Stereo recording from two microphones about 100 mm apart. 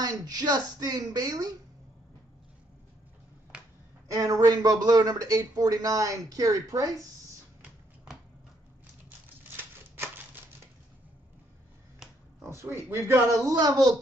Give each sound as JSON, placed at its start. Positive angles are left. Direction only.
{"t": 0.0, "sound": "a woman's voice", "side_deg": -40}
{"t": 4.1, "sound": "a woman's voice", "side_deg": -35}
{"t": 9.4, "sound": "a sound", "side_deg": -20}
{"t": 12.6, "sound": "a woman's voice", "side_deg": -25}